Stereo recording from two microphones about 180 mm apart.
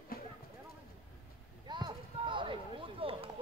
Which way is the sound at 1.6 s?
25° right (ahead or behind).